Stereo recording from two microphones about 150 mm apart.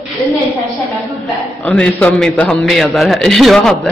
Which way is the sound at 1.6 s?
5° left (ahead or behind).